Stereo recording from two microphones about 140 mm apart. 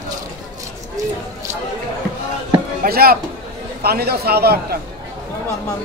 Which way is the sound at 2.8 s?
90° right.